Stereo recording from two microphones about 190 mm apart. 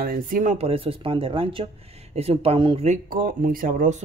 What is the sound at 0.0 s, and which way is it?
Speech, 45° right (ahead or behind).